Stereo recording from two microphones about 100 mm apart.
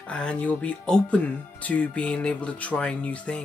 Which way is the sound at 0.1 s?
10° left (ahead or behind).